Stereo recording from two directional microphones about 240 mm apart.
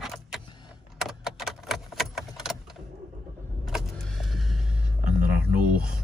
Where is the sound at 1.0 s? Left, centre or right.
Centre.